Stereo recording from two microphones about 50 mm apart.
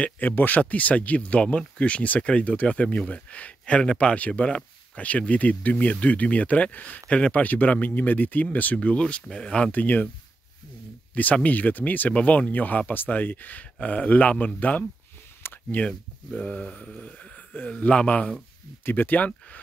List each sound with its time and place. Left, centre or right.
0.2 s speech: left
0.6 s speech: left
7.4 s speech: left
8.7 s speech: left
9.7 s speech: left
11.4 s speech: left
15.4 s a sound: left
16.3 s speech: left
18.9 s speech: left